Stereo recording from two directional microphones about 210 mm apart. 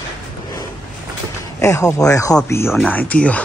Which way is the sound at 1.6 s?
15° left (ahead or behind).